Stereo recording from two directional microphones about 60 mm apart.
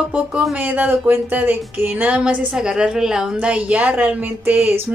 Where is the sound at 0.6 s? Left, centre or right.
Right.